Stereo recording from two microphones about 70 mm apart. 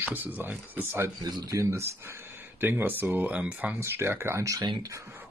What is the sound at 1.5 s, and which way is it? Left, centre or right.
Speech, right.